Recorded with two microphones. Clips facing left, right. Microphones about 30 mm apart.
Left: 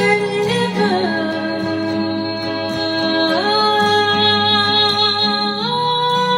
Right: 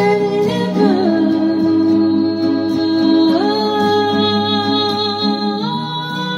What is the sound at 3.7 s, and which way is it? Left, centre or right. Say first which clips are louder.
Music: even; left.